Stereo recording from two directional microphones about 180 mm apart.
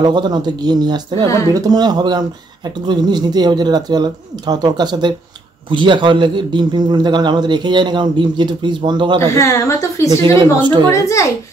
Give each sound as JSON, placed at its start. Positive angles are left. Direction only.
{"t": 0.0, "sound": "speech", "side_deg": -25}
{"t": 9.2, "sound": "a woman's voice", "side_deg": 15}
{"t": 10.3, "sound": "speech", "side_deg": -25}
{"t": 10.9, "sound": "a woman's voice", "side_deg": 15}